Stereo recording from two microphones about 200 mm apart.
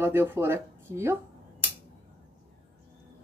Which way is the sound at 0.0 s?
10° right (ahead or behind).